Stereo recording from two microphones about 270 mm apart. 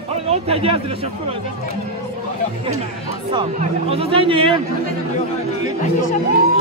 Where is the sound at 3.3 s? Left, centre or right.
Right.